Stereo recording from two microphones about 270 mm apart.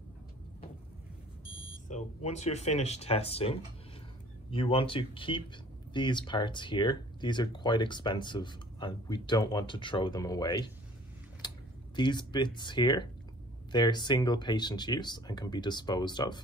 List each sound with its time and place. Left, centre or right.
1.9 s speech: left